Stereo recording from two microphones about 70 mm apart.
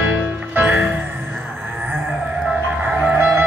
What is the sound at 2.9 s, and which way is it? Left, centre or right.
Music, centre.